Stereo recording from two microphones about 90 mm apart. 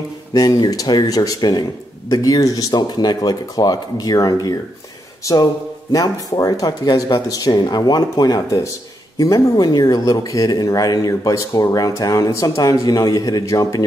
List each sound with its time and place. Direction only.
0.3 s speech: 50° left (ahead or behind)